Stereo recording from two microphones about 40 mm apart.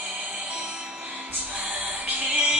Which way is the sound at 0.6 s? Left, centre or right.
Right.